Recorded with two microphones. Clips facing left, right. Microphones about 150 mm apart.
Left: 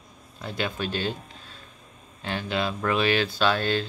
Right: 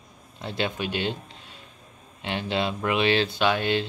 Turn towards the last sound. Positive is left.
turn(degrees=-15)  # may be behind; listen again after turning